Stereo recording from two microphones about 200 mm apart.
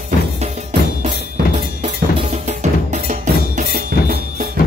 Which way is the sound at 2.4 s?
35° right (ahead or behind).